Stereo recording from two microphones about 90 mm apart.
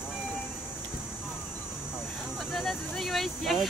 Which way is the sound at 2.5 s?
Centre (ahead or behind).